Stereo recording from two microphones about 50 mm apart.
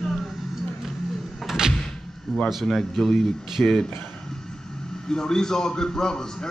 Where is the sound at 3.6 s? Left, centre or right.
Centre.